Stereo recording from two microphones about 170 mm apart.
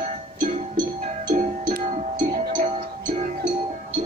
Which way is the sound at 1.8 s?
40° right (ahead or behind).